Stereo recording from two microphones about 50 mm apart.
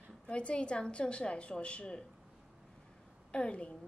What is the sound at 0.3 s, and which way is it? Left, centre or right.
A woman's voice, left.